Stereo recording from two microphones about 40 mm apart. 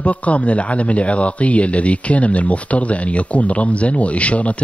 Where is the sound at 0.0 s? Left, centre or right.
Left.